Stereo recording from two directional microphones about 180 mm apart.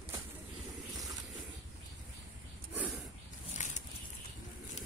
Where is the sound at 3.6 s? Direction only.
40° left (ahead or behind).